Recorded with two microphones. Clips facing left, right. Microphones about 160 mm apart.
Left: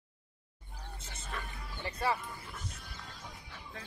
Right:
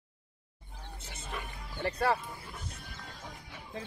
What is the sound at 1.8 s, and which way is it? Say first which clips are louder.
Speech: right 4 dB; 65° right (ahead or behind).